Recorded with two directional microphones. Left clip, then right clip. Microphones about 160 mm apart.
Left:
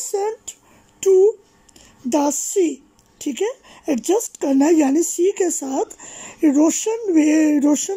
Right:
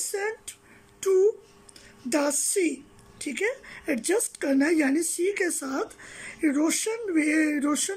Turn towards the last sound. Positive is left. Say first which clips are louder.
# left 8 dB
turn(degrees=20)  # may be behind; listen again after turning